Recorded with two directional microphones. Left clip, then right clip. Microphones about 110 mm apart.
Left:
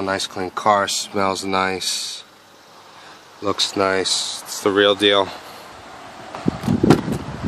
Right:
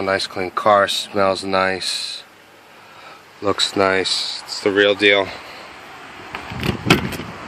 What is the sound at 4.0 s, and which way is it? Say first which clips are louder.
Speech: right 1 dB; centre (ahead or behind).